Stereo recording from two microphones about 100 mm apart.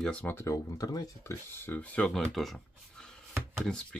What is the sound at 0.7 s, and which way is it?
Speech, 40° left (ahead or behind).